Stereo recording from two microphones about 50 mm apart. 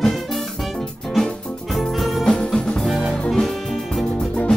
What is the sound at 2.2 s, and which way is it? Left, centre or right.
Music, centre.